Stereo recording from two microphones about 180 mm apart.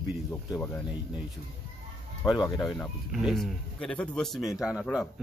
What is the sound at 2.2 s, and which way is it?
Speech, 20° left (ahead or behind).